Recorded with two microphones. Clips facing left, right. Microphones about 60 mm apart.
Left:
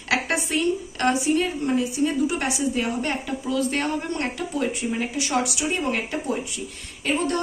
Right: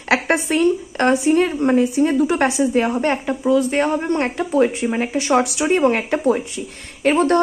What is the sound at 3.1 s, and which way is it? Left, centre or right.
Speech, right.